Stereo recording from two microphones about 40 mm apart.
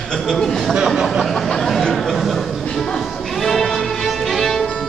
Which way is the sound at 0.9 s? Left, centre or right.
Centre.